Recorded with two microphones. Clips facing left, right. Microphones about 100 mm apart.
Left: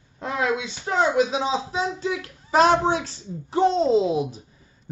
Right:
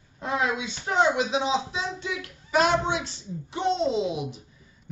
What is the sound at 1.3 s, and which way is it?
A man's voice, 35° left (ahead or behind).